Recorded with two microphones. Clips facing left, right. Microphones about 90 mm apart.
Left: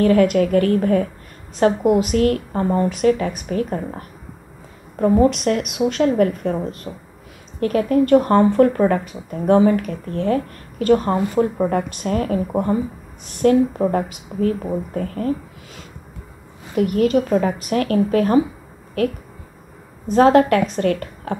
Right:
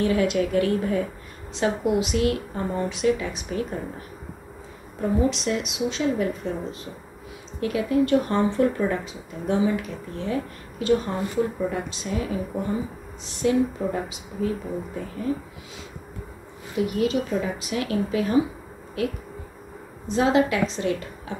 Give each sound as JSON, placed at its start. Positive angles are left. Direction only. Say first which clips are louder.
{"t": 0.0, "sound": "speech", "louder": "left 7 dB", "side_deg": 50}
{"t": 5.0, "sound": "a woman's voice", "louder": "left 8 dB", "side_deg": 55}
{"t": 16.7, "sound": "speech", "louder": "left 7 dB", "side_deg": 55}